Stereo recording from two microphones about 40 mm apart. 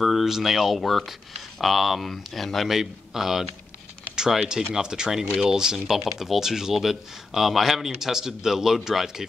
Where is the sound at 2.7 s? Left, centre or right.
Centre.